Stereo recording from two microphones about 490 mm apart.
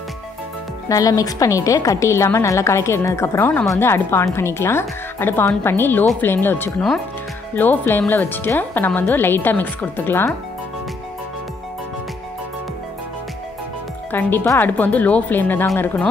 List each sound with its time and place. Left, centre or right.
0.8 s a woman's voice: centre
14.1 s a woman's voice: centre